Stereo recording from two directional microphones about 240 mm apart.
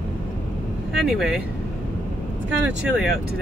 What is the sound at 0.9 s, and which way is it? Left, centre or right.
Speech, centre.